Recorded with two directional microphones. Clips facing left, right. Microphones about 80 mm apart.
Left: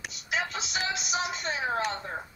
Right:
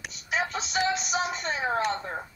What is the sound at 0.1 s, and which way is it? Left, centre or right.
Music, right.